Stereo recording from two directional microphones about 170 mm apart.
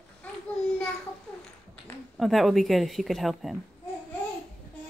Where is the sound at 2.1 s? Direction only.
Centre (ahead or behind).